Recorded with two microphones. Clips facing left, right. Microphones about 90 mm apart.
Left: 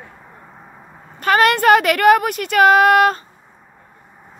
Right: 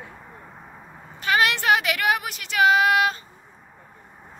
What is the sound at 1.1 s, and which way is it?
A woman's voice, 45° left (ahead or behind).